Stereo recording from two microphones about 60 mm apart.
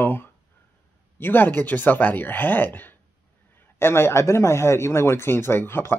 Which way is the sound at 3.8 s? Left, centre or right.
Left.